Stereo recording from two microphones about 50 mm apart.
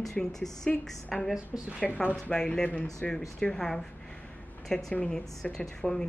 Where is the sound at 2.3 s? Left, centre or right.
Centre.